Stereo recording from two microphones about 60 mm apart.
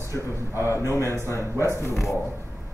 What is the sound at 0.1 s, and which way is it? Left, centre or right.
A man's voice, left.